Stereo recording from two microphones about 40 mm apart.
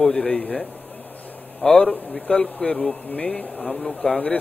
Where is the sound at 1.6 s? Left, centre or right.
Centre.